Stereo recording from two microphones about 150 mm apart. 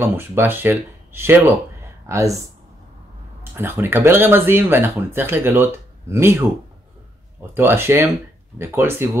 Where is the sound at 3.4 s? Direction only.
15° right (ahead or behind).